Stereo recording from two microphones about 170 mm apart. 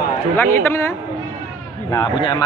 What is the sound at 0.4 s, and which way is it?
Speech, 15° left (ahead or behind).